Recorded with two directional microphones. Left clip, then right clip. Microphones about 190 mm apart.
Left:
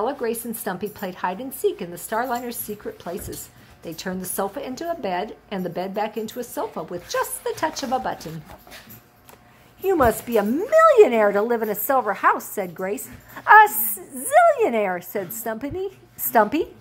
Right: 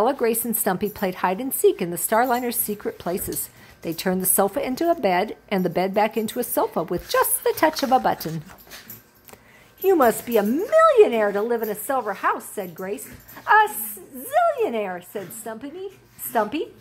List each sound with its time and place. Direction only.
0.0 s speech: 35° right (ahead or behind)
9.8 s a woman's voice: 15° right (ahead or behind); by 16.6 s 15° left (ahead or behind)